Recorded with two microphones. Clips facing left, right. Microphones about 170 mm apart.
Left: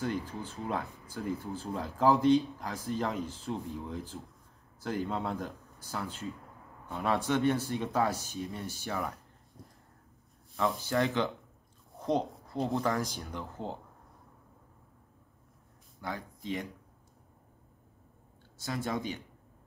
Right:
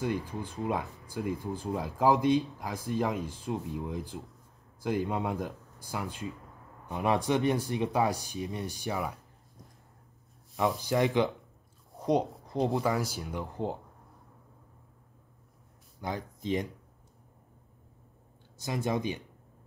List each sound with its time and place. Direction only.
0.0 s speech: 10° right (ahead or behind)
10.5 s speech: 15° right (ahead or behind)
12.8 s speech: 10° right (ahead or behind)
16.0 s speech: 20° right (ahead or behind)
18.6 s speech: 15° right (ahead or behind)